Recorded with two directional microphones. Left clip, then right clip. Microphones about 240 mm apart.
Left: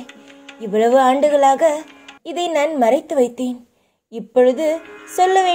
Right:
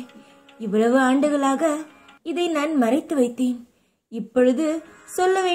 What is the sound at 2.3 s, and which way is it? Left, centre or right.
Music, centre.